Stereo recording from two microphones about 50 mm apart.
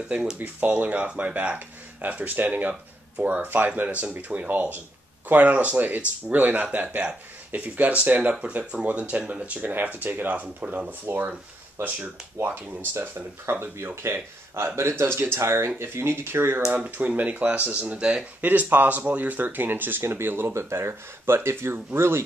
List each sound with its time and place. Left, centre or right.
0.4 s speech: right
11.1 s speech: right
12.4 s speech: right
12.9 s speech: right
17.1 s speech: right
18.4 s speech: right
20.0 s speech: right